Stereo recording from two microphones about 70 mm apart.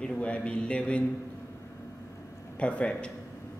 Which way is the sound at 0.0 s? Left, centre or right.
Centre.